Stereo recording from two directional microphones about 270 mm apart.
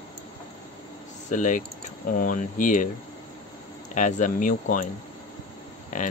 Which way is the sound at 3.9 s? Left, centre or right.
Left.